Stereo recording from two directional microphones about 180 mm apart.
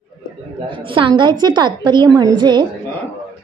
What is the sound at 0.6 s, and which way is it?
A woman's voice, 30° right (ahead or behind).